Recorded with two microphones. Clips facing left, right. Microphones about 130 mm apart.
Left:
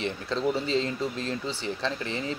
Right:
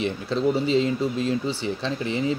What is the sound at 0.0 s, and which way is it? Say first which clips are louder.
Speech: right 5 dB; 15° right (ahead or behind).